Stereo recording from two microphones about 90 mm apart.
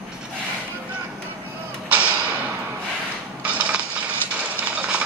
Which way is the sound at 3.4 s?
15° right (ahead or behind).